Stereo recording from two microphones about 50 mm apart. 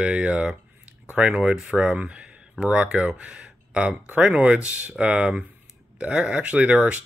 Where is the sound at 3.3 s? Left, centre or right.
Right.